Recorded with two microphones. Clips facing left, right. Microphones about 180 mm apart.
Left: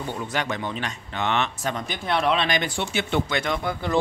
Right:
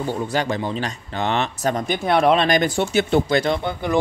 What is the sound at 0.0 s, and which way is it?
Speech, 35° right (ahead or behind).